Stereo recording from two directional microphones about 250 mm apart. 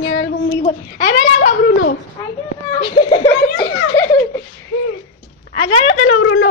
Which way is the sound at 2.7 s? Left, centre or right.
Left.